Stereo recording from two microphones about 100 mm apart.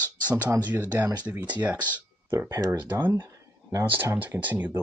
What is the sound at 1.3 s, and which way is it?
Speech, 20° right (ahead or behind).